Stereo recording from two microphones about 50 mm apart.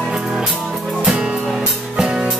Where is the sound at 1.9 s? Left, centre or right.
Centre.